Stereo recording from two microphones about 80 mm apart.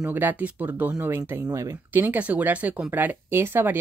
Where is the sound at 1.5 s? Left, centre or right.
Right.